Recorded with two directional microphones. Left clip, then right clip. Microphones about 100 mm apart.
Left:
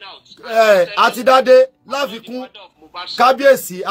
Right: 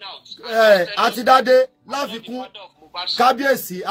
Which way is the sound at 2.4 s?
55° right (ahead or behind).